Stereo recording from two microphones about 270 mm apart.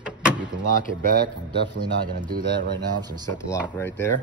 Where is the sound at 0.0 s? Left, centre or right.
Centre.